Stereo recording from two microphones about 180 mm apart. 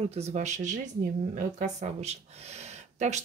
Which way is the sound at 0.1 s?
40° right (ahead or behind).